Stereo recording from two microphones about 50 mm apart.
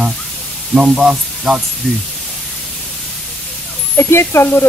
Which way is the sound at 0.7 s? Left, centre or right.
Centre.